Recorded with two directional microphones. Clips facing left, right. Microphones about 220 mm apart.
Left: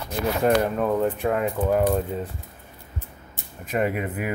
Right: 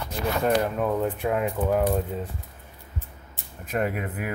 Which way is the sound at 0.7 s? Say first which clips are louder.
Left 3 dB; 5° right (ahead or behind).